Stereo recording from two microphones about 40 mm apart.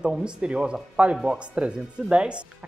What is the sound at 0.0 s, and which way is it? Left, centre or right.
Speech, right.